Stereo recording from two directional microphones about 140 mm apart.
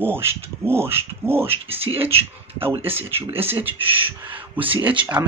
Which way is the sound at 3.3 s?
15° right (ahead or behind).